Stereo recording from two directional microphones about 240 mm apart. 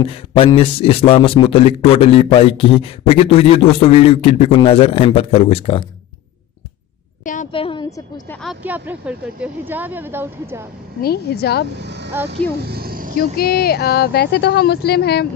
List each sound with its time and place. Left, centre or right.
0.0 s a man's voice: left
7.2 s a woman's voice: left
8.3 s speech: centre
11.0 s speech: left
11.8 s speech: right
13.4 s speech: left